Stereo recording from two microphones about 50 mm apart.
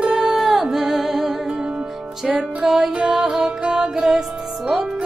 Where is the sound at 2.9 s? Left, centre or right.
Right.